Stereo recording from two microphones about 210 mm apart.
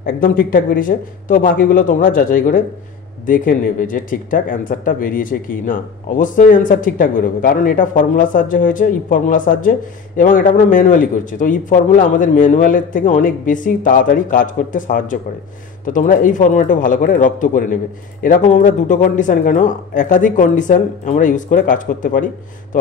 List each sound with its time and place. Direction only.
0.0 s speech: 40° left (ahead or behind)